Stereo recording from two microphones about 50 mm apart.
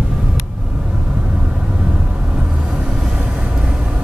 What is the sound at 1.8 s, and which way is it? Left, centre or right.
Vehicle, right.